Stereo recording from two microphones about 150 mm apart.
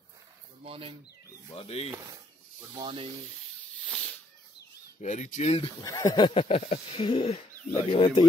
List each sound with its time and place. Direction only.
0.7 s speech: 35° right (ahead or behind)
1.5 s a sound: 40° left (ahead or behind)
2.7 s speech: 30° right (ahead or behind)
3.8 s cat: 5° left (ahead or behind)
4.6 s speech: 55° left (ahead or behind)
5.9 s a sound: 25° left (ahead or behind)